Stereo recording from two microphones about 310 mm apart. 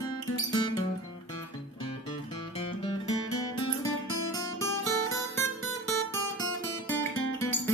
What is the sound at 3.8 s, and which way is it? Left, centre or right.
Guitar, centre.